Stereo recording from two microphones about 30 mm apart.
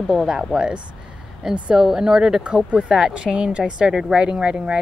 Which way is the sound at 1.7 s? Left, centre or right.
Centre.